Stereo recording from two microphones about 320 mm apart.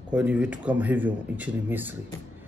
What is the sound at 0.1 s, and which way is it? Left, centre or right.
A man's voice, centre.